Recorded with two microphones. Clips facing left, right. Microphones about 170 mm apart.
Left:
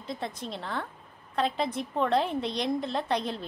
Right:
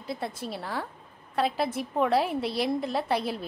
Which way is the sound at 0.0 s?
5° right (ahead or behind).